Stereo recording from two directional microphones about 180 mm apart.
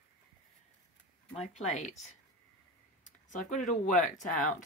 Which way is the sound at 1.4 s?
40° left (ahead or behind).